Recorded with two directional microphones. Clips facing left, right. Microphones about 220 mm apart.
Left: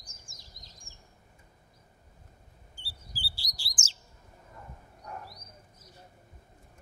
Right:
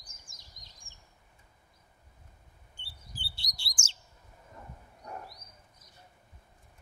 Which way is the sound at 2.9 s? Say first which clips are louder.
Left 1 dB; 5° left (ahead or behind).